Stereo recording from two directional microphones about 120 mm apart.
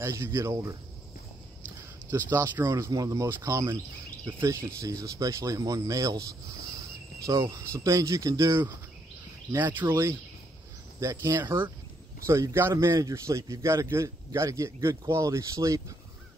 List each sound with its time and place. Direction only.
0.0 s a man's voice: 20° right (ahead or behind)
2.0 s speech: 20° right (ahead or behind)
2.7 s a man's voice: 30° right (ahead or behind)